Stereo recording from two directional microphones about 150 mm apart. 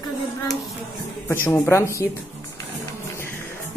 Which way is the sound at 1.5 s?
20° left (ahead or behind).